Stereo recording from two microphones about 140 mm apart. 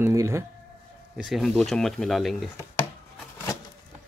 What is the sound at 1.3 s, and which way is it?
Speech, centre (ahead or behind).